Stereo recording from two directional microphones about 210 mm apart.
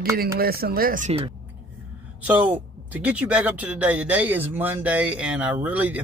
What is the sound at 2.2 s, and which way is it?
Speech, 10° right (ahead or behind).